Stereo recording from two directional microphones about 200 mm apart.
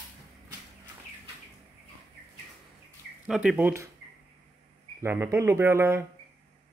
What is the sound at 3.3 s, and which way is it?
Speech, 5° right (ahead or behind).